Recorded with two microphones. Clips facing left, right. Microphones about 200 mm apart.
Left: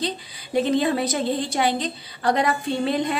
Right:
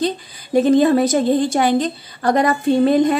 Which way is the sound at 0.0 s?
45° right (ahead or behind).